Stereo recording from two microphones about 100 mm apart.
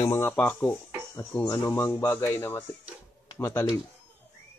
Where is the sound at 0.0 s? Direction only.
25° left (ahead or behind).